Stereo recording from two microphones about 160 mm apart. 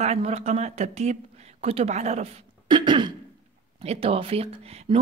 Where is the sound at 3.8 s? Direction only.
40° right (ahead or behind).